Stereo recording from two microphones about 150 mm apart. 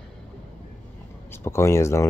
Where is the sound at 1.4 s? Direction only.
20° left (ahead or behind).